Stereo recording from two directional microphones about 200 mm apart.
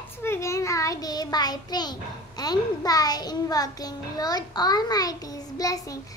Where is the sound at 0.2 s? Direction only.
15° left (ahead or behind).